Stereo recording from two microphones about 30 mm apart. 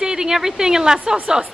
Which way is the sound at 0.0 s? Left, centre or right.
Right.